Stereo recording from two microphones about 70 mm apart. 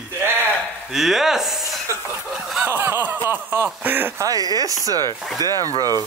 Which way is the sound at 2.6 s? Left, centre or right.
Right.